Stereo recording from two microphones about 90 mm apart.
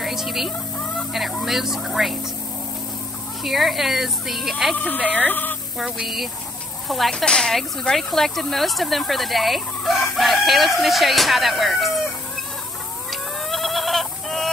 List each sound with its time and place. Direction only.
0.0 s a sound: 5° right (ahead or behind)
1.1 s speech: centre (ahead or behind)
3.4 s speech: centre (ahead or behind)
4.7 s speech: 20° left (ahead or behind)
5.8 s speech: centre (ahead or behind)
13.1 s chicken: centre (ahead or behind)